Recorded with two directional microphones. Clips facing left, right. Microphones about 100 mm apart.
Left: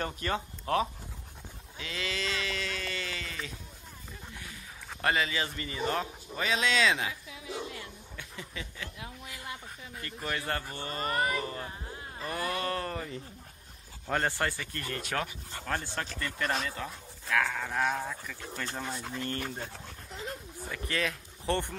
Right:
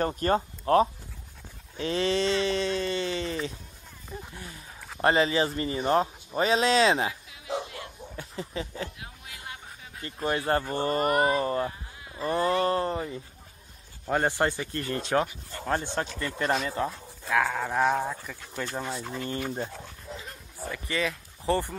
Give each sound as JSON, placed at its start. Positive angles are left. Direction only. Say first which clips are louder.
{"t": 0.0, "sound": "speech", "louder": "right 8 dB", "side_deg": -40}
{"t": 4.3, "sound": "a sound", "louder": "right 3 dB", "side_deg": -30}
{"t": 5.0, "sound": "speech", "louder": "right 7 dB", "side_deg": -30}
{"t": 8.2, "sound": "snicker", "louder": "right 8 dB", "side_deg": -35}
{"t": 10.2, "sound": "speech", "louder": "right 8 dB", "side_deg": -30}
{"t": 11.1, "sound": "speech", "louder": "right 4 dB", "side_deg": -25}
{"t": 17.3, "sound": "speech", "louder": "right 4 dB", "side_deg": -15}
{"t": 18.8, "sound": "speech", "louder": "right 3 dB", "side_deg": -5}
{"t": 20.7, "sound": "speech", "louder": "right 3 dB", "side_deg": 0}